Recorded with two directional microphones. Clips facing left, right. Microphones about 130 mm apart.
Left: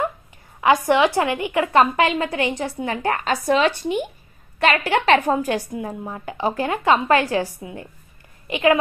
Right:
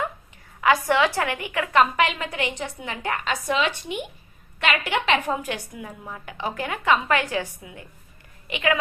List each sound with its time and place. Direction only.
0.6 s a woman's voice: 20° left (ahead or behind)